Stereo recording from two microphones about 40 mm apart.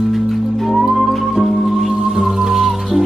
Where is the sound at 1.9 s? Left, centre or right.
Centre.